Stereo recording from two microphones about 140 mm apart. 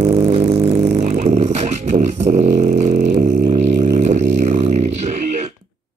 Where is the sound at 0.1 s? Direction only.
50° right (ahead or behind).